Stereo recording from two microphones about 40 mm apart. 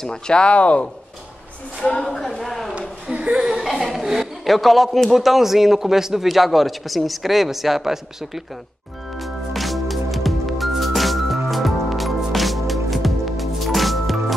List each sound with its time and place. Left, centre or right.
0.0 s speech: centre
0.4 s speech: left
2.0 s a man's voice: centre
3.1 s laughter: right
3.3 s chuckle: centre
3.6 s a man's voice: centre
9.2 s music: centre